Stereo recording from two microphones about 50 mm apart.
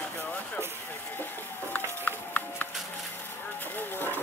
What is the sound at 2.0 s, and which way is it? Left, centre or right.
Run, left.